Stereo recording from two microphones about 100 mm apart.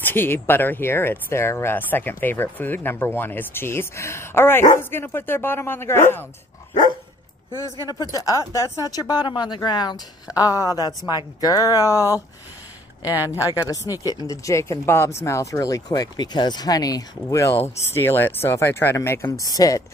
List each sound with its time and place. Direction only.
0.0 s speech: 20° left (ahead or behind)
7.9 s speech: 40° left (ahead or behind)
13.4 s speech: 35° left (ahead or behind)